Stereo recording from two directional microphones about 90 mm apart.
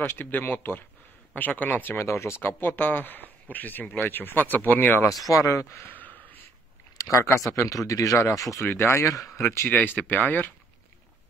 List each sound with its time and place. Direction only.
0.0 s speech: 25° left (ahead or behind)
5.3 s a sound: 35° left (ahead or behind); by 6.4 s 20° left (ahead or behind)
7.0 s a sound: 35° left (ahead or behind)
7.5 s speech: 35° left (ahead or behind)
8.6 s speech: 25° left (ahead or behind)
9.7 s speech: 20° left (ahead or behind)